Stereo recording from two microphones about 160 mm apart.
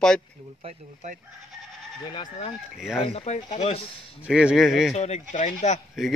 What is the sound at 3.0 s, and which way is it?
Speech, 40° left (ahead or behind).